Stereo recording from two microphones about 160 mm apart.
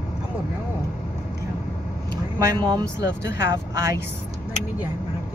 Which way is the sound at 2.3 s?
25° right (ahead or behind).